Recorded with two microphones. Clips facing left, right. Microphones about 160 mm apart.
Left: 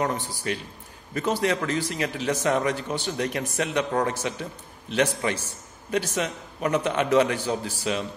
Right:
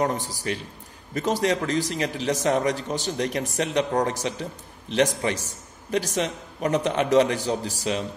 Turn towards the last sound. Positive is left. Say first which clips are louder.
# right 1 dB
turn(degrees=-40)  # may be behind; listen again after turning